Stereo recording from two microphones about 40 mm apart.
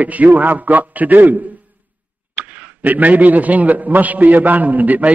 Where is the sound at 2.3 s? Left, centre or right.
Right.